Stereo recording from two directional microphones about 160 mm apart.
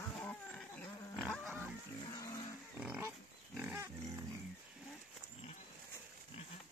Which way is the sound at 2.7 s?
5° right (ahead or behind).